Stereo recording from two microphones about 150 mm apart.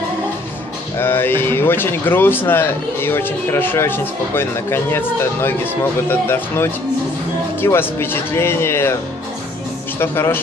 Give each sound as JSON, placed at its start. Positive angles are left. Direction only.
{"t": 0.9, "sound": "speech", "side_deg": 15}
{"t": 9.9, "sound": "speech", "side_deg": 15}